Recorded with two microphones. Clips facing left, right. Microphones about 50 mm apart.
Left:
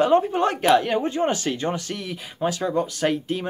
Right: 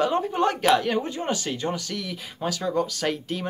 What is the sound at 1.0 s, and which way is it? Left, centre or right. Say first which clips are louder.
Speech: left 5 dB; left.